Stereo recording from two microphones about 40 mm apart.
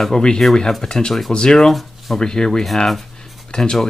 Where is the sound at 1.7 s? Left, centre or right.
Centre.